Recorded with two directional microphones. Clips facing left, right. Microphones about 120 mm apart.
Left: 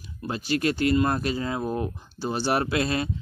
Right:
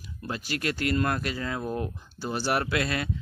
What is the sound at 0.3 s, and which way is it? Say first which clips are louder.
Speech: left 6 dB; 25° left (ahead or behind).